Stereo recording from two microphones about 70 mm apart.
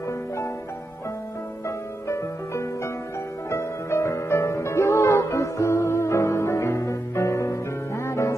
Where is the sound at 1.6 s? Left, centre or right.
Left.